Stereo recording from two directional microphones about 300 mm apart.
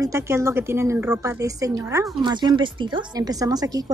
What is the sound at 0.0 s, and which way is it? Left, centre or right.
A woman's voice, centre.